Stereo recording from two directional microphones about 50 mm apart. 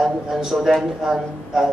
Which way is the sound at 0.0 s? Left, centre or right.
Centre.